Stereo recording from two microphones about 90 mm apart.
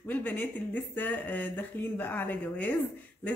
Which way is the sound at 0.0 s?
20° left (ahead or behind).